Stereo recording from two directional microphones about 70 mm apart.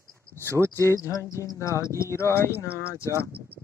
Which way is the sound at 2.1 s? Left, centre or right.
Left.